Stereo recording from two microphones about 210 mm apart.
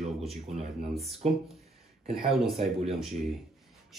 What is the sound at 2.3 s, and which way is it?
Speech, centre (ahead or behind).